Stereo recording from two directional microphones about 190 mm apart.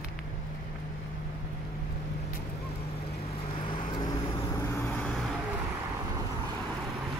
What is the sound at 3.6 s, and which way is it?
Vehicle, 25° left (ahead or behind).